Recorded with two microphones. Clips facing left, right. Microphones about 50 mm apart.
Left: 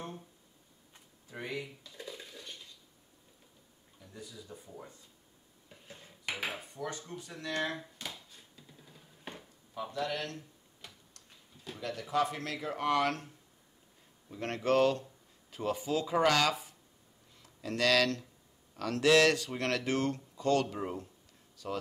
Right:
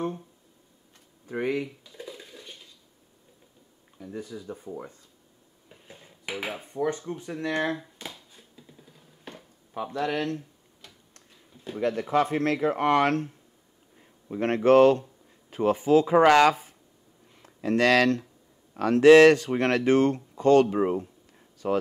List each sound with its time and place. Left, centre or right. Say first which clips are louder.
1.2 s speech: right 12 dB; right
1.9 s dishes: right 4 dB; centre
4.0 s speech: right 12 dB; right
5.7 s dishes: right 3 dB; centre
6.6 s speech: right 12 dB; right
8.0 s finger snapping: right 3 dB; centre
9.8 s speech: right 7 dB; right
11.8 s speech: right 8 dB; right
14.3 s speech: right 11 dB; right